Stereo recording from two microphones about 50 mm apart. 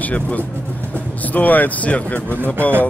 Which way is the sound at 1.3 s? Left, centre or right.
Left.